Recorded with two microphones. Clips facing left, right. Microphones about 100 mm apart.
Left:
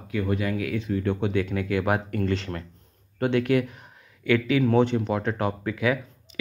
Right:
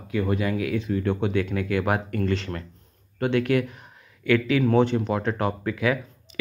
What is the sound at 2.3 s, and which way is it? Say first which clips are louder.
Speech: right 1 dB; 30° left (ahead or behind).